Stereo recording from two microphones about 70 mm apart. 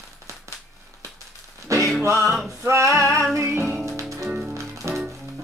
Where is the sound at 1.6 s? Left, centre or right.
Right.